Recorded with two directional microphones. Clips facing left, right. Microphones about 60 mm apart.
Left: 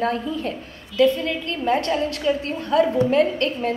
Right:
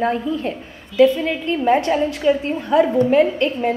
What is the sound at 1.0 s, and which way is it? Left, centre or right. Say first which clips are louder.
A woman's voice: right 3 dB; centre.